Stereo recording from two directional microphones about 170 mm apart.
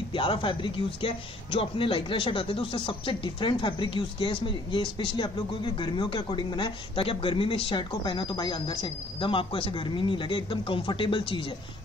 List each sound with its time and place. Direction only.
0.1 s speech: 30° left (ahead or behind)